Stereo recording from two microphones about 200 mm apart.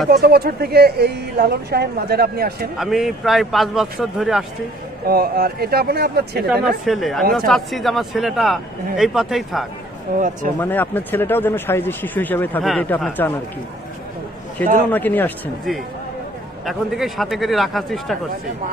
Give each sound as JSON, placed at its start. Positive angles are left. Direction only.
{"t": 0.1, "sound": "speech", "side_deg": -55}
{"t": 2.8, "sound": "a man's voice", "side_deg": 0}
{"t": 5.0, "sound": "speech", "side_deg": -50}
{"t": 6.8, "sound": "a man's voice", "side_deg": 0}
{"t": 10.1, "sound": "speech", "side_deg": -40}
{"t": 10.6, "sound": "speech", "side_deg": 10}
{"t": 14.9, "sound": "a man's voice", "side_deg": 10}